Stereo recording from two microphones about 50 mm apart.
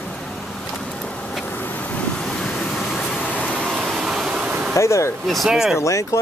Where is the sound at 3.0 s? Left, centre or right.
Left.